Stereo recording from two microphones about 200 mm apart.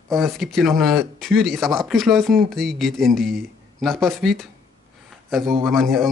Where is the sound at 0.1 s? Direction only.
Centre (ahead or behind).